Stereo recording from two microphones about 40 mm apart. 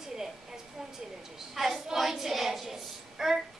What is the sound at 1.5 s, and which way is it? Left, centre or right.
A woman's voice, centre.